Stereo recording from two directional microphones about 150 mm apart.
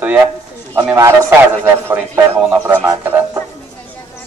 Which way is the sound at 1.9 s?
15° right (ahead or behind).